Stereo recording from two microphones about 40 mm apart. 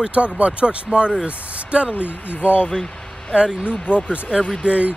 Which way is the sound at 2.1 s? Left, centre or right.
Left.